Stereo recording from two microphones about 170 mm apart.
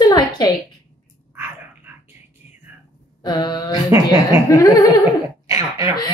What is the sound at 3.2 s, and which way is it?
Speech, 25° left (ahead or behind).